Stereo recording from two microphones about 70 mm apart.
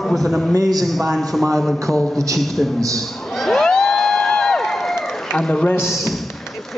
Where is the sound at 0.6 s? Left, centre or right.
Right.